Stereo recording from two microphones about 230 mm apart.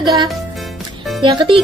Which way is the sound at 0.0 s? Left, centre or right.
Centre.